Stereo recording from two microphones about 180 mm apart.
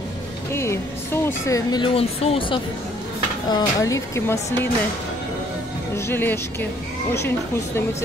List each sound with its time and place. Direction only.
0.5 s speech: 15° left (ahead or behind); by 2.6 s 30° left (ahead or behind)
3.4 s speech: 20° left (ahead or behind)
5.9 s speech: 10° left (ahead or behind)